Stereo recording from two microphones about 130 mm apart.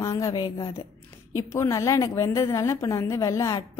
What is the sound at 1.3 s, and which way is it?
A woman's voice, 20° left (ahead or behind).